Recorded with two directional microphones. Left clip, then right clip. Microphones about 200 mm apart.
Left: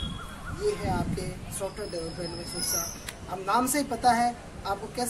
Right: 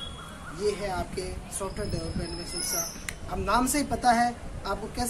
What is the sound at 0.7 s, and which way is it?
Music, 25° right (ahead or behind).